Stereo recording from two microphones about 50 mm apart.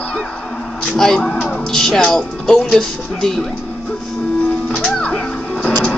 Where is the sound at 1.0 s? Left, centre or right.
Centre.